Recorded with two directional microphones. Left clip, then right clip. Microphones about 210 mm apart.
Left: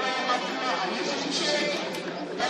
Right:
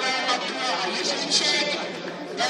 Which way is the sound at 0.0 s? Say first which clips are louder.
Right 2 dB; 50° right (ahead or behind).